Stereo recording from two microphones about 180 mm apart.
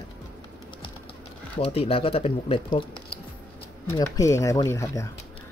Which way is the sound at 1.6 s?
35° left (ahead or behind).